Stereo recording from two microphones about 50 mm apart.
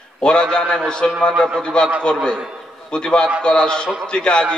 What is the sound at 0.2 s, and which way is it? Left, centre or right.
A man's voice, centre.